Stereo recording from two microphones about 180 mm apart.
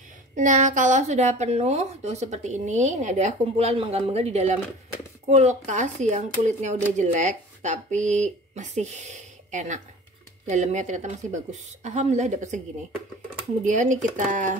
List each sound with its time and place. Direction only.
0.4 s a woman's voice: 45° right (ahead or behind)
13.7 s speech: 45° right (ahead or behind)